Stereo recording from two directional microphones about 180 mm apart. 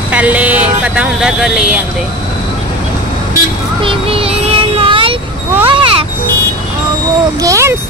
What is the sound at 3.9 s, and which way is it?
Child singing, 30° right (ahead or behind).